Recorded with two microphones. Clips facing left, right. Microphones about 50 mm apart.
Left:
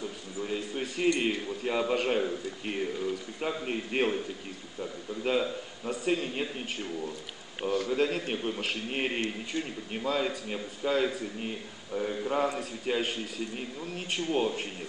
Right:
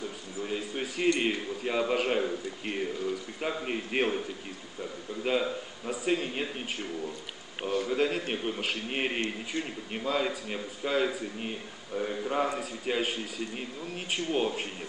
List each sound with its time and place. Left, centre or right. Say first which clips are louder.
0.9 s a man's voice: even; centre
5.2 s a man's voice: even; centre
7.6 s a man's voice: even; centre
14.1 s a man's voice: even; centre